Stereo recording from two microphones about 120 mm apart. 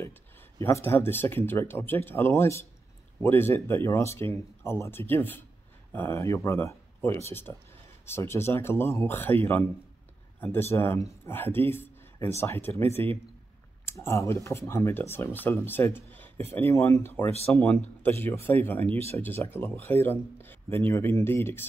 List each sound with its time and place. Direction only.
0.6 s speech: 20° left (ahead or behind)